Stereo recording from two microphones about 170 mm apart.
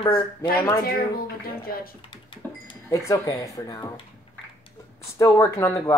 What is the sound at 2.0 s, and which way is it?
Cash register, 30° left (ahead or behind).